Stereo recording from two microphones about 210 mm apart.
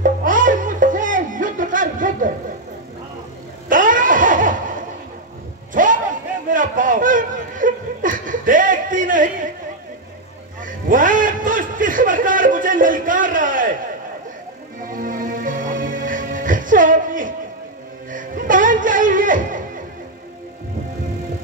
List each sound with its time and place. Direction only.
0.0 s music: 40° right (ahead or behind)
3.6 s laughter: 40° right (ahead or behind)
5.7 s a sound: 40° right (ahead or behind)
6.5 s laughter: 40° right (ahead or behind)
10.6 s music: 40° right (ahead or behind)
14.8 s music: 40° right (ahead or behind)